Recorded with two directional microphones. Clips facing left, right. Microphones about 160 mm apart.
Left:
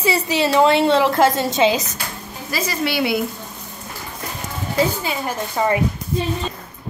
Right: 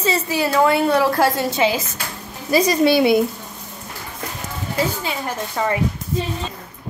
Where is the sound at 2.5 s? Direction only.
20° right (ahead or behind).